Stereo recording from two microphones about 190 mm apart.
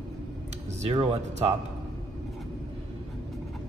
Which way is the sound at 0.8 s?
30° right (ahead or behind).